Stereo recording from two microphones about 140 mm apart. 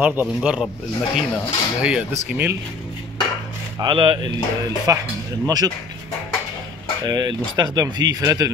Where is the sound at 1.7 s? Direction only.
10° right (ahead or behind).